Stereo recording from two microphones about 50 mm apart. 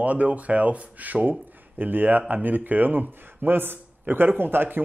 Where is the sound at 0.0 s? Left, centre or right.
Right.